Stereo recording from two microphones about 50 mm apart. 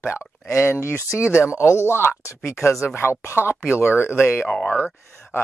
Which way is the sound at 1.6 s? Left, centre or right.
Left.